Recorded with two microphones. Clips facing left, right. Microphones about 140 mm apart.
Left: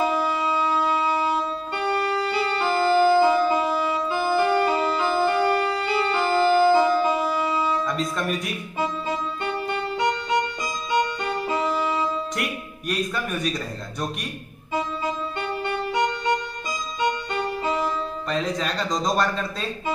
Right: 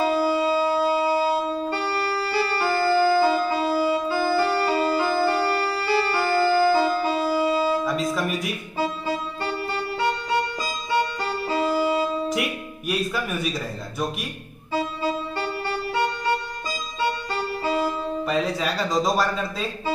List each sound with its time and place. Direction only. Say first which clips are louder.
0.2 s music: right 3 dB; 30° right (ahead or behind)
1.9 s organ: left 2 dB; 20° left (ahead or behind)
3.7 s organ: right 3 dB; 30° right (ahead or behind)
4.1 s organ: left 1 dB; 20° left (ahead or behind)
5.4 s music: left 2 dB; 25° left (ahead or behind)
7.2 s music: right 3 dB; 30° right (ahead or behind)
7.8 s music: right 2 dB; centre (ahead or behind)
9.7 s music: left 1 dB; 20° left (ahead or behind)
10.6 s music: even; 30° right (ahead or behind)
12.4 s speech: right 2 dB; 5° right (ahead or behind)
14.7 s music: right 1 dB; 30° right (ahead or behind)
15.6 s music: left 2 dB; 20° left (ahead or behind)
17.0 s music: left 1 dB; 30° right (ahead or behind)
18.3 s speech: even; 5° right (ahead or behind)